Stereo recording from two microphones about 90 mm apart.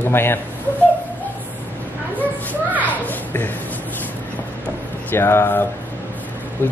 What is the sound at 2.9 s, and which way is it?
Children playing, 20° left (ahead or behind).